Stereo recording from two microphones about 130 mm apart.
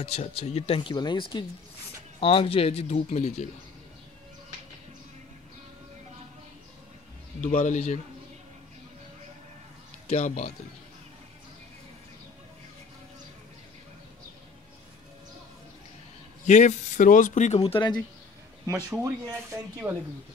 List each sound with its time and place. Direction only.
0.0 s speech: 50° left (ahead or behind)
7.4 s a man's voice: 70° left (ahead or behind)
10.0 s speech: 70° left (ahead or behind)
16.4 s speech: 65° left (ahead or behind); by 17.8 s 45° left (ahead or behind)
18.9 s speech: 10° right (ahead or behind)